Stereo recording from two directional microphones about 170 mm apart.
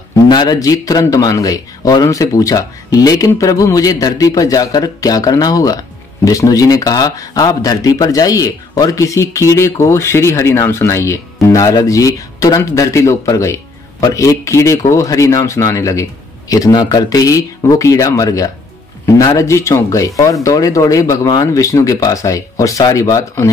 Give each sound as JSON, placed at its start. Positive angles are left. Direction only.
{"t": 0.3, "sound": "speech", "side_deg": 25}